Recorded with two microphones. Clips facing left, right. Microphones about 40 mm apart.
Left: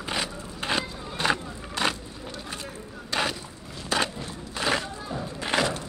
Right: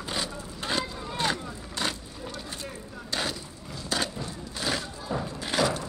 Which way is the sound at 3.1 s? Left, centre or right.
Left.